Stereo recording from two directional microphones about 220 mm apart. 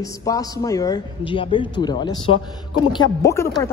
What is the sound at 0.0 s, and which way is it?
A man's voice, 15° left (ahead or behind).